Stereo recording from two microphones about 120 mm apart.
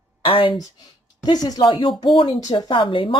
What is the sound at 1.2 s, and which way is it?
Speech, 35° left (ahead or behind).